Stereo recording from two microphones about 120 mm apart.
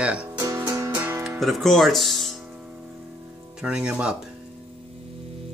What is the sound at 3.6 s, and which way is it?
Speech, 10° right (ahead or behind).